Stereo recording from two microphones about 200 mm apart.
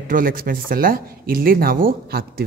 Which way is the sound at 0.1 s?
45° right (ahead or behind).